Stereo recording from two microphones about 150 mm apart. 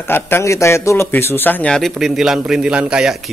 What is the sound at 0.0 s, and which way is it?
A man's voice, 15° left (ahead or behind).